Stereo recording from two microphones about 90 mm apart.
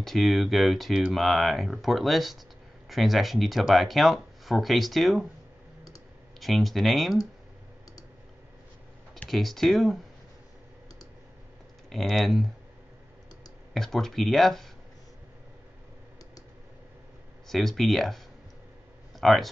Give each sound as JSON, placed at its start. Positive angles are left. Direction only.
{"t": 0.0, "sound": "speech", "side_deg": 0}
{"t": 6.4, "sound": "speech", "side_deg": 0}
{"t": 9.3, "sound": "speech", "side_deg": 0}
{"t": 11.9, "sound": "speech", "side_deg": 0}
{"t": 13.7, "sound": "speech", "side_deg": 5}
{"t": 17.5, "sound": "speech", "side_deg": 5}